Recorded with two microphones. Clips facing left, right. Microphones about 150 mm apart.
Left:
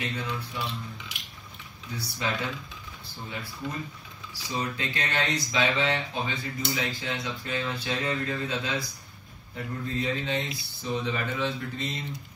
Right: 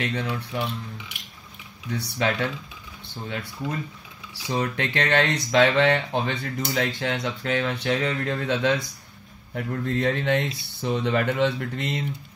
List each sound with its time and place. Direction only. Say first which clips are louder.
0.0 s speech: right 5 dB; 70° right (ahead or behind)
4.3 s speech: right 5 dB; 70° right (ahead or behind)